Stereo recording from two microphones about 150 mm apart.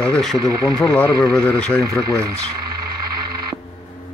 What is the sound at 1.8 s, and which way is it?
Speech, 20° right (ahead or behind).